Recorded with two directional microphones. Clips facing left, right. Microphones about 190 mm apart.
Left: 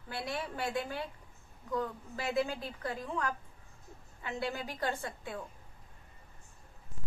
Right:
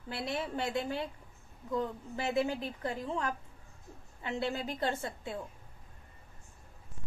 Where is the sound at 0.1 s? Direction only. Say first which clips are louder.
Right 2 dB; 25° right (ahead or behind).